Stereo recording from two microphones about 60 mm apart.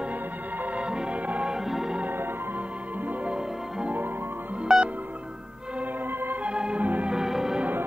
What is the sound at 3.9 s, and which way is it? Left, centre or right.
Music, right.